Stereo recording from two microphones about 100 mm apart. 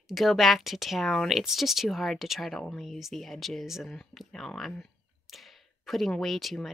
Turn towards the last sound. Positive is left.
turn(degrees=0)  # may be behind; listen again after turning